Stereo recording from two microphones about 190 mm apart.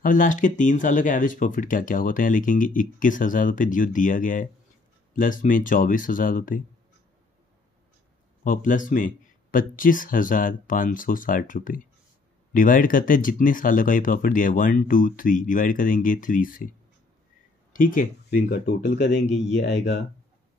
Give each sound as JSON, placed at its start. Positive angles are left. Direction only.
{"t": 0.0, "sound": "speech", "side_deg": 45}
{"t": 8.5, "sound": "speech", "side_deg": 45}
{"t": 17.7, "sound": "speech", "side_deg": 45}
{"t": 19.6, "sound": "speech", "side_deg": 70}